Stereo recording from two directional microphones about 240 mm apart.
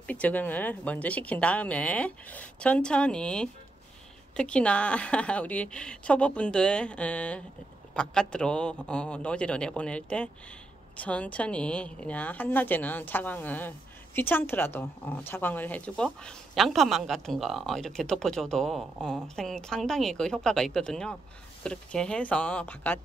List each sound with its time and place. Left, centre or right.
0.0 s a woman's voice: centre